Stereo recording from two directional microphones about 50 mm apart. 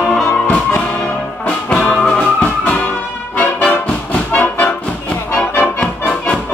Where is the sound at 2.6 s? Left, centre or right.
Left.